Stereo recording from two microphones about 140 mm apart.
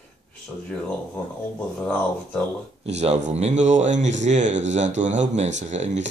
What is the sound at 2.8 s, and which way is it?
Speech, 50° right (ahead or behind).